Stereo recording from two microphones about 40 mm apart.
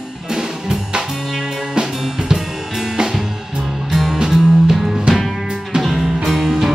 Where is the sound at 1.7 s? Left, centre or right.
Centre.